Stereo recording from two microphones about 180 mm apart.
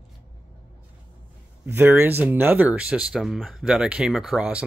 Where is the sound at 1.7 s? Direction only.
10° right (ahead or behind).